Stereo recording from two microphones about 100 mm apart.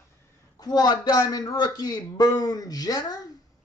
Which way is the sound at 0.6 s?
40° left (ahead or behind).